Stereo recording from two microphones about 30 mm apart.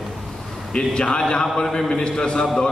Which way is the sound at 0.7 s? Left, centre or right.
Left.